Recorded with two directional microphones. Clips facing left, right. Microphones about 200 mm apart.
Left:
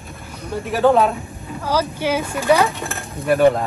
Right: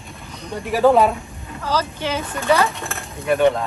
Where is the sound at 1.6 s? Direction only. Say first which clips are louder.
Left 2 dB; 10° left (ahead or behind).